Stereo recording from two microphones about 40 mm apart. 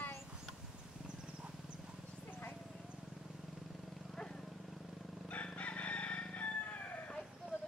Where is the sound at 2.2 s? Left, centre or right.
Left.